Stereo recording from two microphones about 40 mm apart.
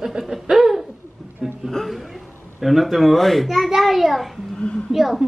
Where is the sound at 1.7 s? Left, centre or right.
Centre.